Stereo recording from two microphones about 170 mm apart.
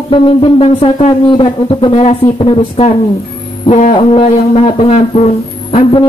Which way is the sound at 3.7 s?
45° left (ahead or behind).